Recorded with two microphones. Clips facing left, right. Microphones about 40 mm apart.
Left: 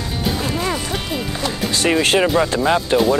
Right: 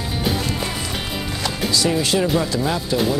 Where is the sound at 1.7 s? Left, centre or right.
Left.